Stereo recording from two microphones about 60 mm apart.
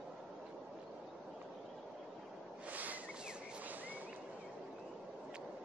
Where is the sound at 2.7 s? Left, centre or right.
Right.